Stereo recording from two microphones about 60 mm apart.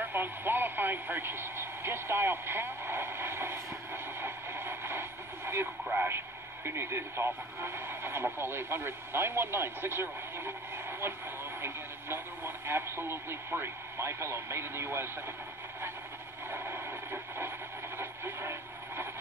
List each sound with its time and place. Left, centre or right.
0.0 s speech: right
16.4 s a sound: right
17.9 s radio: right